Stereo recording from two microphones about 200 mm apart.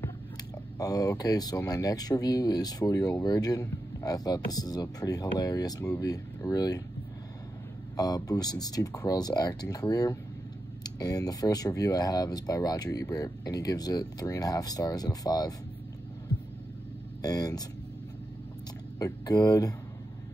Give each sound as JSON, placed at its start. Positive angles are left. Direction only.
{"t": 0.7, "sound": "speech", "side_deg": 20}
{"t": 7.9, "sound": "speech", "side_deg": 20}
{"t": 17.2, "sound": "speech", "side_deg": 20}
{"t": 18.9, "sound": "speech", "side_deg": 20}